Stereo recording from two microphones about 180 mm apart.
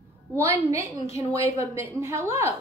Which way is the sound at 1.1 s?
35° left (ahead or behind).